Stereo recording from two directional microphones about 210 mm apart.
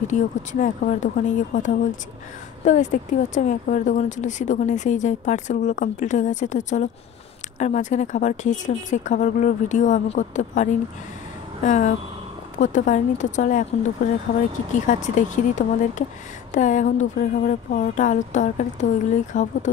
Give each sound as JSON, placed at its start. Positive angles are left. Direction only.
{"t": 0.1, "sound": "speech", "side_deg": 35}
{"t": 14.7, "sound": "speech", "side_deg": 35}